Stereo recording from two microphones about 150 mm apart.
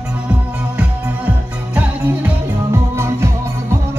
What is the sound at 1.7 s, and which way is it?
Music, 15° right (ahead or behind).